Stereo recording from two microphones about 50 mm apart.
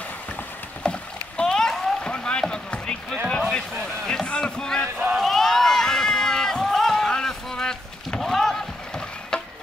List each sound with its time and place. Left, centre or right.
0.8 s rowboat: centre
2.1 s a sound: centre
3.5 s boat: centre
5.1 s run: centre
6.6 s a sound: centre
8.2 s rowboat: centre